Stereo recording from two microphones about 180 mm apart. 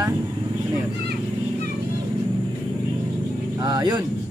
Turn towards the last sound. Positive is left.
turn(degrees=-20)  # may be behind; listen again after turning